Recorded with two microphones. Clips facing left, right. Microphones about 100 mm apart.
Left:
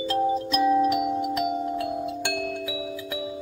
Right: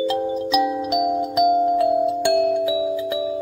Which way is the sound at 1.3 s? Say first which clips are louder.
Right 9 dB; 15° right (ahead or behind).